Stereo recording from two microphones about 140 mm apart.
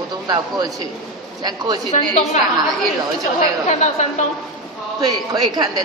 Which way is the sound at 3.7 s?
55° left (ahead or behind).